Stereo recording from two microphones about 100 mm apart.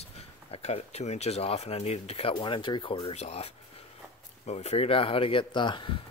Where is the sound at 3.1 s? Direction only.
90° left; by 5.9 s 55° left (ahead or behind).